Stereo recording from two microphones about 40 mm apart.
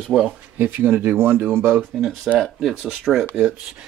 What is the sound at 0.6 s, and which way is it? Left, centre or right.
Speech, right.